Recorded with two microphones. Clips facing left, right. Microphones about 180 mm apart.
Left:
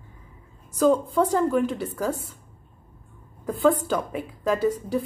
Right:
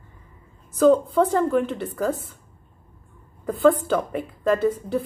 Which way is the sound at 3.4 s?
Centre (ahead or behind).